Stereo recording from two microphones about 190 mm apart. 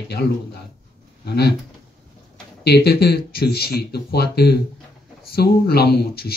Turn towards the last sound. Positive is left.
turn(degrees=55)  # may be behind; listen again after turning